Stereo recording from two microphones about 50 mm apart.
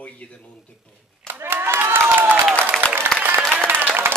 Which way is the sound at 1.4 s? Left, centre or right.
Right.